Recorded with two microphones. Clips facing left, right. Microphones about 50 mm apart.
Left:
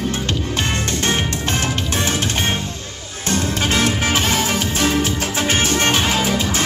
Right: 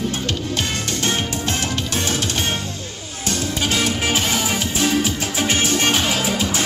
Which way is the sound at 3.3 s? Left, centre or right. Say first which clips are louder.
Left 3 dB; left.